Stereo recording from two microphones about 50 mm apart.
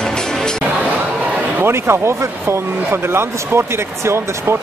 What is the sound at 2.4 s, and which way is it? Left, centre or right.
Speech, right.